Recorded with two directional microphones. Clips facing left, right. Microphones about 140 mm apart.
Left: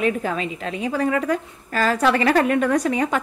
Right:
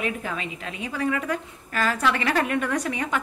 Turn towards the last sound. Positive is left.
turn(degrees=35)  # may be behind; listen again after turning